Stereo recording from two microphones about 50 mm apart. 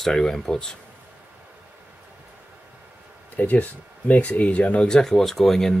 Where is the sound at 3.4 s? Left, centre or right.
Left.